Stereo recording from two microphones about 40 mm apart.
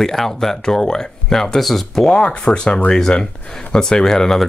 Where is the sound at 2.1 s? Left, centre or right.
Left.